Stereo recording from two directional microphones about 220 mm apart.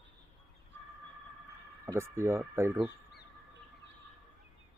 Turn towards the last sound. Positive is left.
turn(degrees=45)  # may be behind; listen again after turning